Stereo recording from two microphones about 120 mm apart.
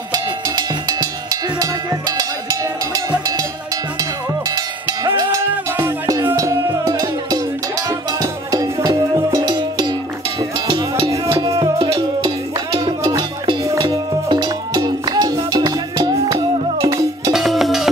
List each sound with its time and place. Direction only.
0.1 s cowbell: 30° right (ahead or behind)
3.1 s music: 35° right (ahead or behind)
5.0 s cowbell: 35° right (ahead or behind)
8.2 s music: 30° right (ahead or behind)
11.4 s music: 35° right (ahead or behind)
12.7 s music: 30° right (ahead or behind)
17.3 s music: centre (ahead or behind)